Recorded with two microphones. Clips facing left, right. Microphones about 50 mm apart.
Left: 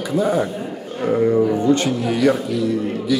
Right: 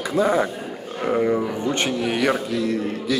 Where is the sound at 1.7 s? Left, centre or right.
Right.